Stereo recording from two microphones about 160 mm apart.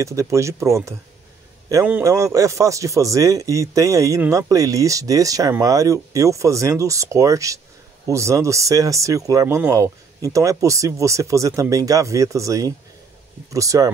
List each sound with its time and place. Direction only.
0.0 s a man's voice: 20° right (ahead or behind)